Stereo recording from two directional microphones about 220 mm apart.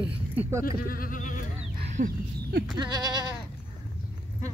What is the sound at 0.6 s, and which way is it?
Speech, 40° left (ahead or behind).